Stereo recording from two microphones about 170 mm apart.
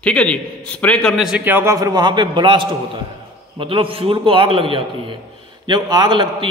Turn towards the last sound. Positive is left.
turn(degrees=-30)  # may be behind; listen again after turning